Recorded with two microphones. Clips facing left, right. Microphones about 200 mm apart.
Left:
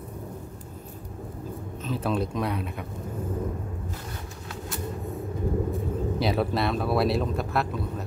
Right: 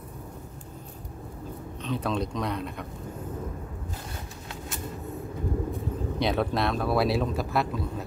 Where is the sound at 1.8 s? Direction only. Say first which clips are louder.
Left 1 dB; 5° left (ahead or behind).